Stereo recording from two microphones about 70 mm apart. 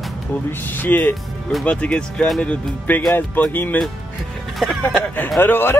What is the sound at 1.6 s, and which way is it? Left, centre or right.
Speech, centre.